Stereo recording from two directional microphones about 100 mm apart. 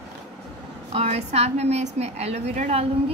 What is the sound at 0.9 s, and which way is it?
A woman's voice, 90° right.